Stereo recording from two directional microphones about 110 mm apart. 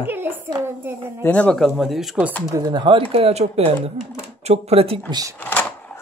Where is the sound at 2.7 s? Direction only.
50° right (ahead or behind).